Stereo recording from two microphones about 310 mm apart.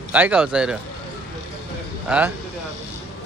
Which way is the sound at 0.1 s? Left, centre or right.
Centre.